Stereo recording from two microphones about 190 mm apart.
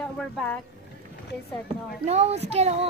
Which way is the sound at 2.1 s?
35° right (ahead or behind).